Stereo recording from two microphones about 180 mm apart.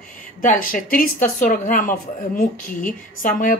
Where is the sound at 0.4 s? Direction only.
50° left (ahead or behind).